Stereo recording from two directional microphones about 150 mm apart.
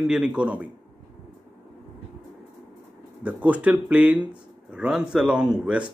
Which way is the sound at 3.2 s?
10° right (ahead or behind).